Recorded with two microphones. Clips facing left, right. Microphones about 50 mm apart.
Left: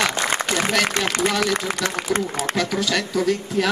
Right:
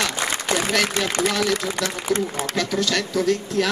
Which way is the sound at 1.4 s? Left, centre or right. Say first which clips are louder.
Even; centre.